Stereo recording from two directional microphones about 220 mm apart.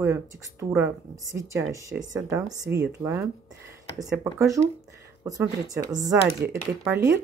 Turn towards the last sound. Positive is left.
turn(degrees=-10)  # may be behind; listen again after turning